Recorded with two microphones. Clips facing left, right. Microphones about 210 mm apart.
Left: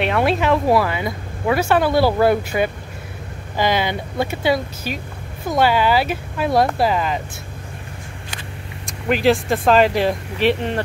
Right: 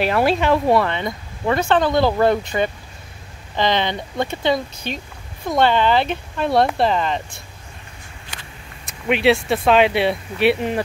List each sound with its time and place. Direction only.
0.0 s speech: centre (ahead or behind)
8.8 s speech: centre (ahead or behind)